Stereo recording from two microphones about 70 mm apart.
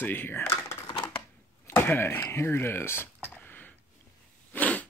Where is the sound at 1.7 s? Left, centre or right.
Left.